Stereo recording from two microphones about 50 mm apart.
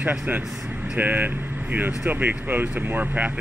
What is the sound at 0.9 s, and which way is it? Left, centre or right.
Speech, right.